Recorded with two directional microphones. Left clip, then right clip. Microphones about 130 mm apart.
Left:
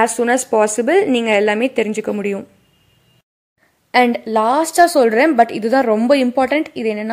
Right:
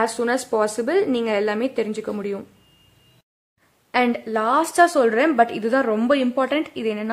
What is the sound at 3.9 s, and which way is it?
A woman's voice, 35° left (ahead or behind).